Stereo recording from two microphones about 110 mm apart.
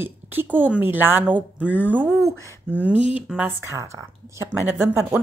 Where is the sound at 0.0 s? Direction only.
20° right (ahead or behind).